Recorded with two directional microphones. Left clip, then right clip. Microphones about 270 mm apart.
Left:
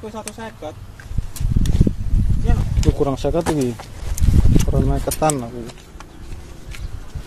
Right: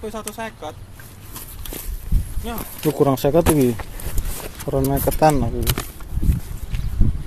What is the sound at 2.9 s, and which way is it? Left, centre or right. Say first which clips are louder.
Speech: right 4 dB; right.